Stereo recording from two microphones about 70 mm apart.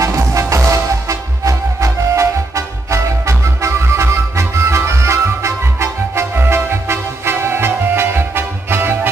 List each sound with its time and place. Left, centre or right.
0.0 s music: right